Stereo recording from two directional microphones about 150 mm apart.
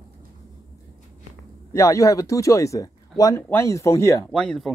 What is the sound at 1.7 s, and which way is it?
Speech, 20° left (ahead or behind).